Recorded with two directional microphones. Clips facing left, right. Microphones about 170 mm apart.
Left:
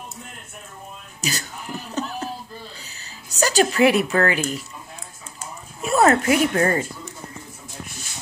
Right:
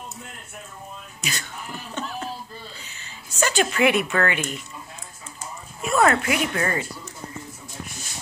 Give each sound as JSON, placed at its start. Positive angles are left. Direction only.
{"t": 1.2, "sound": "sheep", "side_deg": 35}
{"t": 2.8, "sound": "a sound", "side_deg": 35}
{"t": 5.8, "sound": "speech", "side_deg": 35}